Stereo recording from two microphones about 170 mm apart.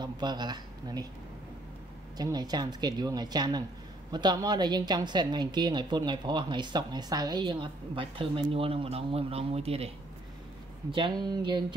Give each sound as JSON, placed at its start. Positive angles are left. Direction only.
{"t": 0.0, "sound": "speech", "side_deg": -25}
{"t": 2.1, "sound": "a woman's voice", "side_deg": -25}